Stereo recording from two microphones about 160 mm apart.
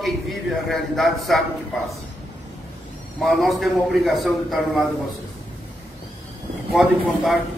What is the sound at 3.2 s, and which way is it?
A man's voice, centre (ahead or behind).